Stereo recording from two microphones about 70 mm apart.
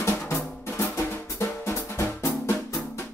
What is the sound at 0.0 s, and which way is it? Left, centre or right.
Drum, left.